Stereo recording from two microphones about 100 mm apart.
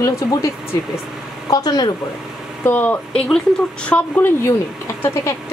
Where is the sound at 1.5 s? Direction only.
40° left (ahead or behind).